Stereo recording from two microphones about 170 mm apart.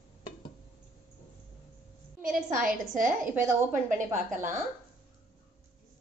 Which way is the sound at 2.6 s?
55° right (ahead or behind).